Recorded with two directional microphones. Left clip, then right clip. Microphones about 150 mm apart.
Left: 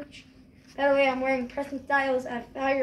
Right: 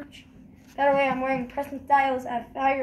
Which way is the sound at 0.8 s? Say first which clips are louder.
Right 1 dB; 20° left (ahead or behind).